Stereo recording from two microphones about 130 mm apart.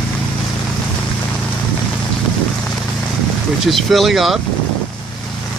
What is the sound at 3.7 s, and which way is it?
Speech, centre (ahead or behind).